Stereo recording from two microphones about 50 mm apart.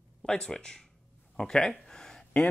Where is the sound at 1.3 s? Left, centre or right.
Centre.